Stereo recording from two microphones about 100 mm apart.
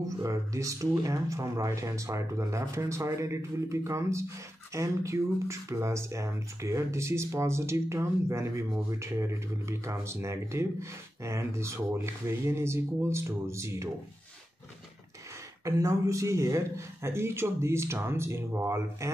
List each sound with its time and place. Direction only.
0.2 s speech: 30° right (ahead or behind)
15.6 s speech: 30° right (ahead or behind)